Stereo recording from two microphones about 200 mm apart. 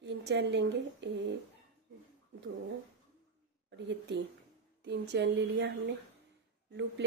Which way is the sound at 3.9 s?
60° right (ahead or behind).